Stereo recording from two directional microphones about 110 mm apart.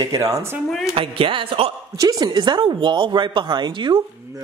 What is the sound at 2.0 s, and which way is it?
Speech, 40° right (ahead or behind).